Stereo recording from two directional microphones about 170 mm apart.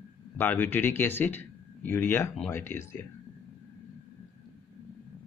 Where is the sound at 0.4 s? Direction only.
10° left (ahead or behind).